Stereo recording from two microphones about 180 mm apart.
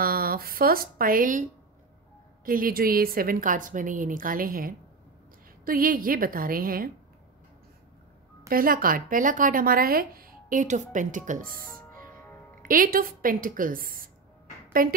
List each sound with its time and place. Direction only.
0.0 s speech: 55° right (ahead or behind)
2.4 s a woman's voice: 50° right (ahead or behind)
8.5 s a woman's voice: 50° right (ahead or behind)
12.6 s a woman's voice: 50° right (ahead or behind)